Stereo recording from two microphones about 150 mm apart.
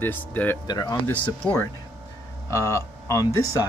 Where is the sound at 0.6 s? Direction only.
30° left (ahead or behind).